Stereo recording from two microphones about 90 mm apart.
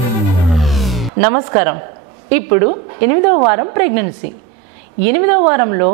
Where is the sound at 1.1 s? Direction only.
15° right (ahead or behind).